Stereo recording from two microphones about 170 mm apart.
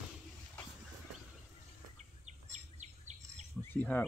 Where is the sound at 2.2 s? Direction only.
45° right (ahead or behind).